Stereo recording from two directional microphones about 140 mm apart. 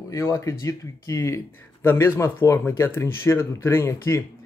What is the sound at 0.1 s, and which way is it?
Speech, 20° left (ahead or behind).